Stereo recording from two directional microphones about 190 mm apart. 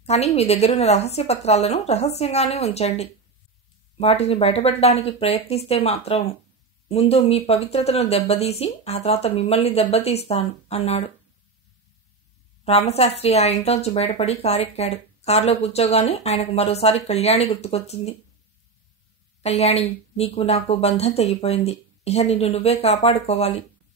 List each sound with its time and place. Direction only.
0.0 s speech: 35° left (ahead or behind)
12.6 s speech: 35° left (ahead or behind)
19.4 s speech: 35° left (ahead or behind)